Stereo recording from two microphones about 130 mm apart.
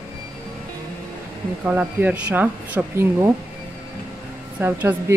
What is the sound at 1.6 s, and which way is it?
Speech, 15° right (ahead or behind).